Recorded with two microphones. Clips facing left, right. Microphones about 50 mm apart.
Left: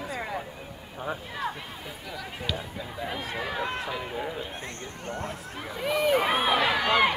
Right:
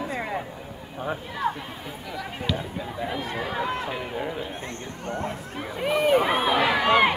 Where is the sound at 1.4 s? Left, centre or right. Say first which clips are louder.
Right 6 dB; right.